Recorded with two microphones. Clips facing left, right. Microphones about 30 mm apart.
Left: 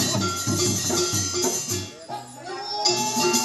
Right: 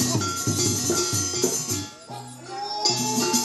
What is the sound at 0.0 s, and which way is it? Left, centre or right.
Music, left.